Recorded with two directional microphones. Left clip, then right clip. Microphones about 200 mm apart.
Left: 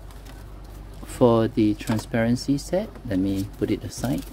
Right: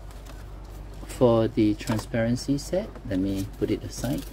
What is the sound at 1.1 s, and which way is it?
Speech, 15° left (ahead or behind).